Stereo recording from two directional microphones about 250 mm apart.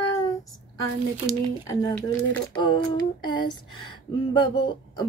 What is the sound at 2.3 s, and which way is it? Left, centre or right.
Speech, centre.